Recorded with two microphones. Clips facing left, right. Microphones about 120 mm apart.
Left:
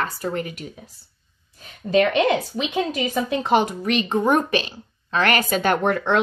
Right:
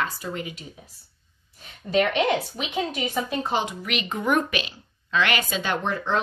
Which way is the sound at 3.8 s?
35° left (ahead or behind).